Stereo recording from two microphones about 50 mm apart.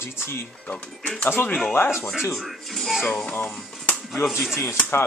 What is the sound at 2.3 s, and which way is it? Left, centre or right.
Speech, centre.